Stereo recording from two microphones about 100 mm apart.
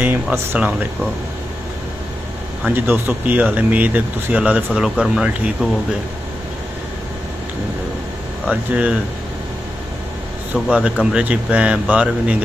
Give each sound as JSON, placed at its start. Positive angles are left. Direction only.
{"t": 0.6, "sound": "speech", "side_deg": -10}
{"t": 2.6, "sound": "speech", "side_deg": -20}
{"t": 8.5, "sound": "speech", "side_deg": -10}
{"t": 10.5, "sound": "speech", "side_deg": -10}